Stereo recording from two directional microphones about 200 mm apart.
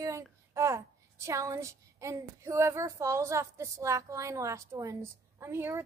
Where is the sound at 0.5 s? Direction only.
15° right (ahead or behind).